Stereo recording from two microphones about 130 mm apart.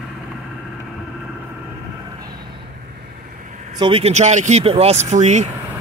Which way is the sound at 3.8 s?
45° right (ahead or behind).